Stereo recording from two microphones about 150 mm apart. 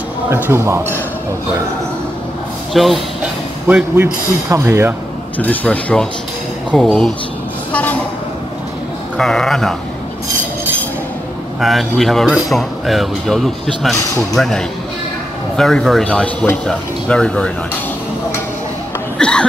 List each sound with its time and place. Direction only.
0.3 s speech: 15° right (ahead or behind)
2.7 s speech: centre (ahead or behind)
3.6 s speech: 15° right (ahead or behind)
5.4 s speech: 10° left (ahead or behind)
7.7 s a sound: 10° left (ahead or behind)
9.2 s speech: 5° left (ahead or behind)
11.6 s speech: centre (ahead or behind)
19.1 s a sound: 5° left (ahead or behind)